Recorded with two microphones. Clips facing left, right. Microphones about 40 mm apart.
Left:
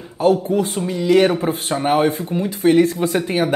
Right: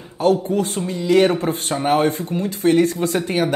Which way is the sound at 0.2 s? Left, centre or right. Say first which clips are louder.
Left 1 dB; centre.